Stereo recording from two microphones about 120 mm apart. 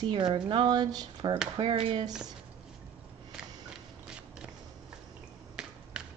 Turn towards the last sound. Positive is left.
turn(degrees=-5)  # may be behind; listen again after turning